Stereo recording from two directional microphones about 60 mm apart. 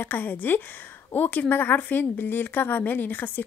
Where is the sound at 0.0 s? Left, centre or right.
Left.